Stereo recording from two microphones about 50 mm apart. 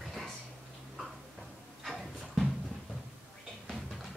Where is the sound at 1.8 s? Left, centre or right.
Centre.